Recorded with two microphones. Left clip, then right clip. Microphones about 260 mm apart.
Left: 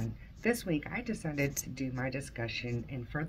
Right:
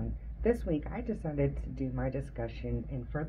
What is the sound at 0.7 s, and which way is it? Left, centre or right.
Speech, centre.